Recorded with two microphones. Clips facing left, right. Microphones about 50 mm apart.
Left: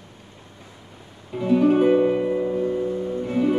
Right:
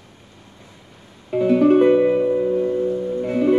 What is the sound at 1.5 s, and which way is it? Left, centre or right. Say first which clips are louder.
Music: right 3 dB; centre.